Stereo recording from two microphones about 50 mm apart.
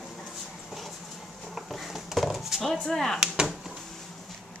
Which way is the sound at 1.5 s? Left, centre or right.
Centre.